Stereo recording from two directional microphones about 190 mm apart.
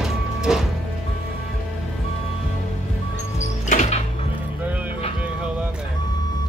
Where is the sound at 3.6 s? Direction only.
40° left (ahead or behind).